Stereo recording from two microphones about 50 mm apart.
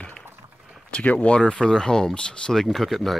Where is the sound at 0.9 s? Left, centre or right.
Left.